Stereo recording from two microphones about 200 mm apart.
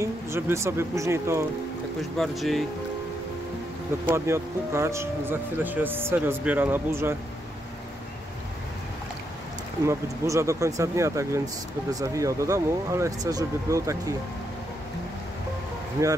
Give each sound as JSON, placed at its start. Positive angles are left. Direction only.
{"t": 0.0, "sound": "speech", "side_deg": -15}
{"t": 2.1, "sound": "speech", "side_deg": 0}
{"t": 4.1, "sound": "speech", "side_deg": -15}
{"t": 9.8, "sound": "speech", "side_deg": -15}
{"t": 16.0, "sound": "speech", "side_deg": -15}